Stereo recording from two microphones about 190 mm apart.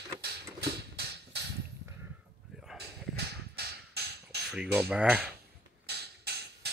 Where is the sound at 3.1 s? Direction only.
60° right (ahead or behind).